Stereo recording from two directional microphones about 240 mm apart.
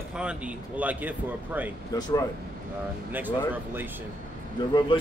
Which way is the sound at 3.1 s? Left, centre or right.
Centre.